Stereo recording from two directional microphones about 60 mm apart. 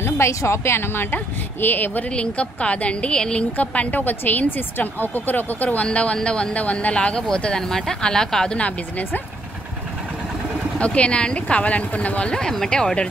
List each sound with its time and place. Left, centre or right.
0.0 s speech: left
2.1 s speech: centre
3.5 s speech: left
8.5 s speech: left
10.8 s speech: centre